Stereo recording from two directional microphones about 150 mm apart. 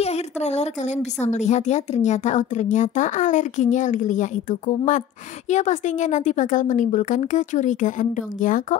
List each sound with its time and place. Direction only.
0.0 s a woman's voice: 45° left (ahead or behind)